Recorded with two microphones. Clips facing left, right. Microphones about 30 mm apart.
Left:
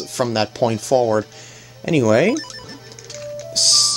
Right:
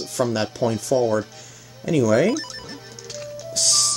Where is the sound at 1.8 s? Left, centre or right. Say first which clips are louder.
Left 3 dB; left.